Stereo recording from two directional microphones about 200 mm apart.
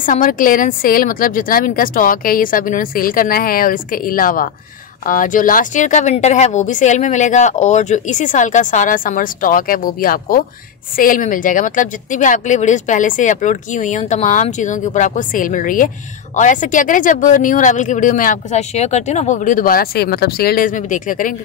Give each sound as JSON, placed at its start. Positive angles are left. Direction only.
{"t": 0.0, "sound": "a woman's voice", "side_deg": 40}